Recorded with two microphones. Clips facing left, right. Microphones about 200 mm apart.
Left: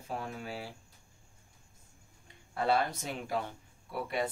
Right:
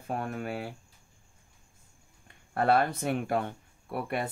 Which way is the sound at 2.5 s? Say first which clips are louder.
Right 5 dB; 60° right (ahead or behind).